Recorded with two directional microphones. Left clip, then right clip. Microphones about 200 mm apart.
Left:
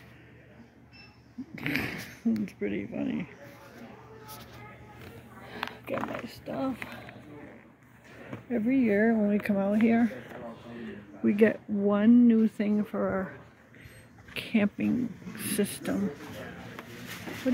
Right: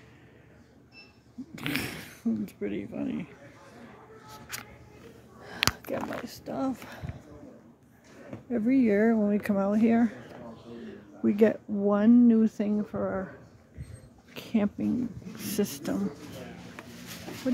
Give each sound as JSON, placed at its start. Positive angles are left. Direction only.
{"t": 1.5, "sound": "a sound", "side_deg": 0}
{"t": 5.7, "sound": "speech", "side_deg": -25}
{"t": 8.6, "sound": "speech", "side_deg": -25}
{"t": 11.2, "sound": "speech", "side_deg": -10}
{"t": 12.9, "sound": "speech", "side_deg": 0}
{"t": 14.3, "sound": "a sound", "side_deg": -15}